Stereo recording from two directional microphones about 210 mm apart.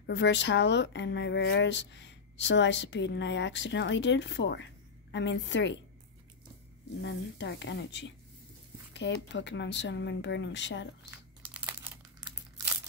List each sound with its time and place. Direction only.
0.0 s a woman's voice: 55° left (ahead or behind)
7.0 s a woman's voice: 55° left (ahead or behind)
11.1 s crumpling: 10° right (ahead or behind)